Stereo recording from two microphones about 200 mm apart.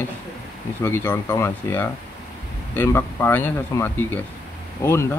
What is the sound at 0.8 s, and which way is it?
Speech, 10° left (ahead or behind).